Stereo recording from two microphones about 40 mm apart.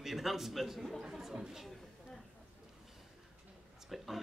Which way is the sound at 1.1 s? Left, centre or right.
Centre.